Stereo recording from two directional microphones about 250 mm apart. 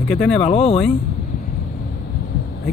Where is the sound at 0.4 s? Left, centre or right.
Left.